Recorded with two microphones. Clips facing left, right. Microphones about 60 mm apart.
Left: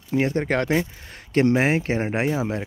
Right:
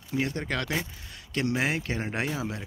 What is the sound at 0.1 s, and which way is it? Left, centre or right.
Speech, left.